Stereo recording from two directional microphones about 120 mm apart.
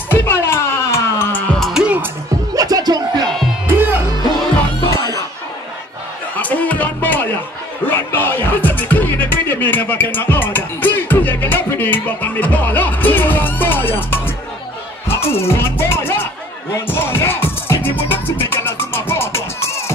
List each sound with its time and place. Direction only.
0.1 s music: 20° left (ahead or behind)
1.6 s music: 5° right (ahead or behind)
2.5 s music: 30° right (ahead or behind)
6.3 s music: 15° left (ahead or behind)